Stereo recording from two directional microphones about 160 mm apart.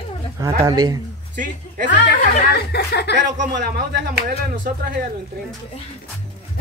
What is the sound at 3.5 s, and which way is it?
Speech, 90° right.